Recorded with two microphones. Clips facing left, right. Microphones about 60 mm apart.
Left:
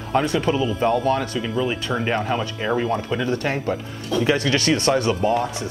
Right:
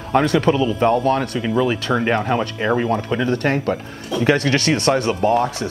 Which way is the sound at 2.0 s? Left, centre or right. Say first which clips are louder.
Right 2 dB; right.